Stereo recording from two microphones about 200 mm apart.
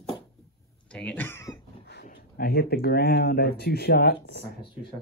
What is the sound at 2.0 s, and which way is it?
Speech, 45° left (ahead or behind).